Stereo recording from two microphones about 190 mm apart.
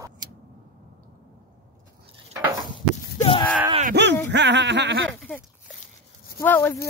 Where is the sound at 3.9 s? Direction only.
65° right (ahead or behind).